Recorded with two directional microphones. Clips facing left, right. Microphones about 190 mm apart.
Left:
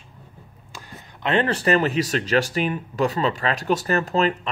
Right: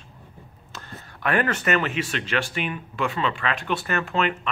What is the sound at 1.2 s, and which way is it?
Speech, 25° left (ahead or behind).